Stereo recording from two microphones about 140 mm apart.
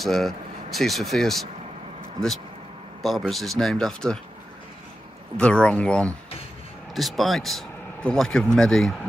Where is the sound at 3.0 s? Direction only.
Centre (ahead or behind).